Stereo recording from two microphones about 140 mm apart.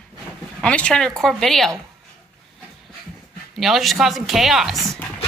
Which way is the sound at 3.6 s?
Centre (ahead or behind).